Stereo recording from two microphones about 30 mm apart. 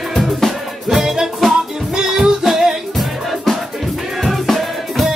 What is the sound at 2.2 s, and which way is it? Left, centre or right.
Music, centre.